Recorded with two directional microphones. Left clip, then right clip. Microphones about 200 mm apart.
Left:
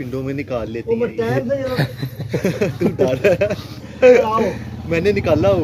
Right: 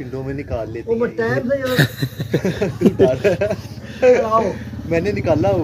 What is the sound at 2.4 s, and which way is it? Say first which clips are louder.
Speech: even; 50° left (ahead or behind).